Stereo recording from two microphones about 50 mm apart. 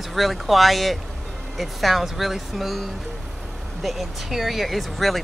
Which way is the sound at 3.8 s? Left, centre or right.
Centre.